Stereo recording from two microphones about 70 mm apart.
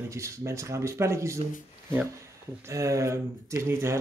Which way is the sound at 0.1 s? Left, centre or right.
Right.